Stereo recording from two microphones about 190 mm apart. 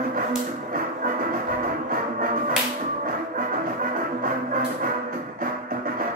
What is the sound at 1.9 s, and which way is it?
Music, 50° right (ahead or behind).